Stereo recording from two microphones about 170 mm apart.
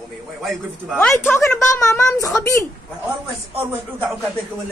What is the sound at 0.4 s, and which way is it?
Speech, centre (ahead or behind).